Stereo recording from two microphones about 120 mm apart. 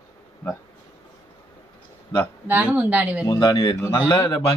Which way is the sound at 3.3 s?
40° left (ahead or behind).